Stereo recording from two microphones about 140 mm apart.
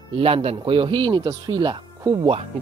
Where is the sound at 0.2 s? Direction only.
45° right (ahead or behind).